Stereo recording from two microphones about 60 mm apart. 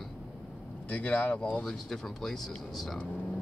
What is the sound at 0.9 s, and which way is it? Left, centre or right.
Speech, left.